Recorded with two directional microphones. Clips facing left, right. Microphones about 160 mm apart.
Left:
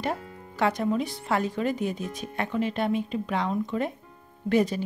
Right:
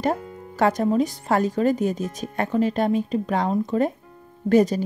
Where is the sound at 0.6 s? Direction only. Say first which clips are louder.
Right 5 dB; 40° right (ahead or behind).